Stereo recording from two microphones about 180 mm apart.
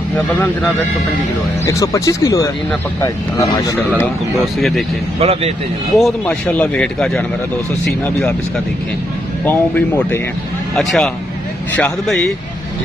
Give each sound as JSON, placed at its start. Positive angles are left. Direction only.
{"t": 0.1, "sound": "speech", "side_deg": 10}
{"t": 1.7, "sound": "speech", "side_deg": 15}
{"t": 4.6, "sound": "a man's voice", "side_deg": 0}
{"t": 5.2, "sound": "speech", "side_deg": -35}
{"t": 5.9, "sound": "speech", "side_deg": 5}
{"t": 9.4, "sound": "a man's voice", "side_deg": 10}